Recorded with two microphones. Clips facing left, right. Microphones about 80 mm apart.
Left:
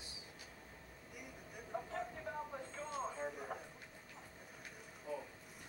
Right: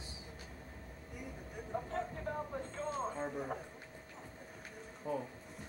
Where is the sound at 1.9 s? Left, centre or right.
Centre.